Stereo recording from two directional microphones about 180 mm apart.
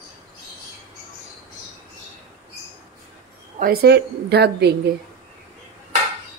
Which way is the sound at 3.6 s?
60° right (ahead or behind).